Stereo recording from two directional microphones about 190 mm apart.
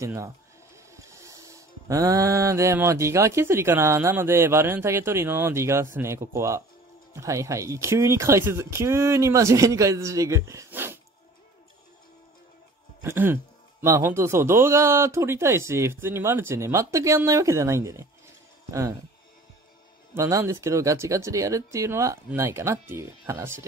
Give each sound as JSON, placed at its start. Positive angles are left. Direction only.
{"t": 0.0, "sound": "music", "side_deg": -15}
{"t": 13.0, "sound": "music", "side_deg": -10}
{"t": 20.2, "sound": "music", "side_deg": -15}